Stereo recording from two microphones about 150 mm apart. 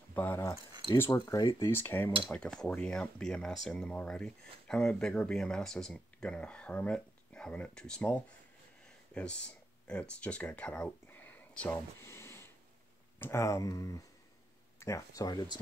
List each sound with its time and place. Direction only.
0.1 s speech: 15° left (ahead or behind)